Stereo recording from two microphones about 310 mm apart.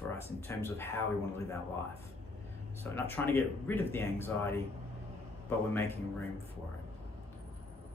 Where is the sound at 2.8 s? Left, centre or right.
Centre.